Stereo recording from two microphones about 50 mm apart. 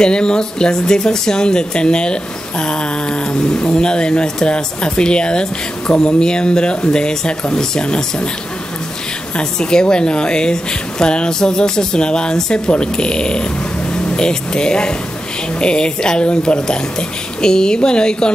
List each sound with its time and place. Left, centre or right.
0.0 s speech: centre
9.4 s speech: centre